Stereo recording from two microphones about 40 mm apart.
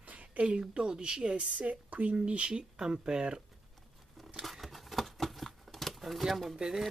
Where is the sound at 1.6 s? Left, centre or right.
Right.